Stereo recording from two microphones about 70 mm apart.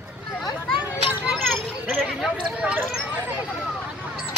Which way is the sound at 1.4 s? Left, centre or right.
Centre.